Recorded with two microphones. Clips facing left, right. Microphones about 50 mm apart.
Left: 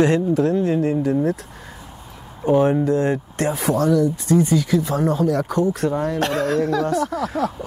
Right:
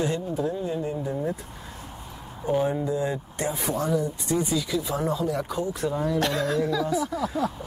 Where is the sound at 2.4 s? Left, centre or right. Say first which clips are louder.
Left 8 dB; left.